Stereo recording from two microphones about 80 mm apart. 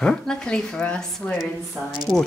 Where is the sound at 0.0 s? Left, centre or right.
Centre.